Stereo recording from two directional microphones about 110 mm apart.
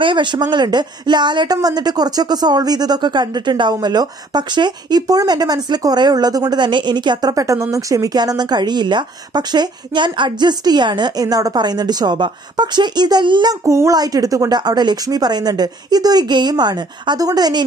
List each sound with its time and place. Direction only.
0.0 s speech: 45° right (ahead or behind)
13.7 s speech: 30° right (ahead or behind)